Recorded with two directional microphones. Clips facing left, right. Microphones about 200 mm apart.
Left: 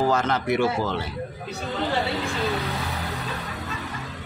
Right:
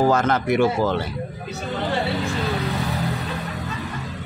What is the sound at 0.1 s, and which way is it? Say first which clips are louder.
Speech: right 3 dB; 50° right (ahead or behind).